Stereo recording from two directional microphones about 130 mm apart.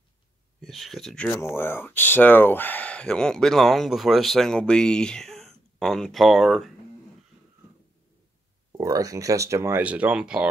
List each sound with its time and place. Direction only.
0.6 s speech: centre (ahead or behind)
1.5 s speech: 15° left (ahead or behind); by 6.7 s centre (ahead or behind)
8.7 s speech: 25° right (ahead or behind); by 10.5 s 5° right (ahead or behind)